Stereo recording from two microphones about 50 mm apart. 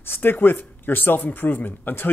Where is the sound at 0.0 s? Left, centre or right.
Left.